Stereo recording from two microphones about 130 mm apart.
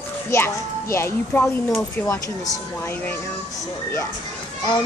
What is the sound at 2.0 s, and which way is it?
Speech, 25° left (ahead or behind).